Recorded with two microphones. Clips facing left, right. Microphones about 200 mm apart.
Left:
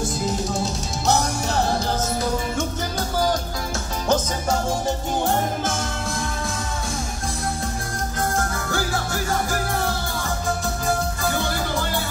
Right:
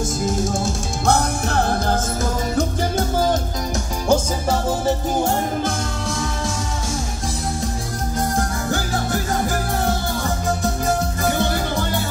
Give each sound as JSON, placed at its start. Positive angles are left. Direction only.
{"t": 1.0, "sound": "music", "side_deg": -55}
{"t": 3.0, "sound": "music", "side_deg": -25}
{"t": 4.1, "sound": "music", "side_deg": -5}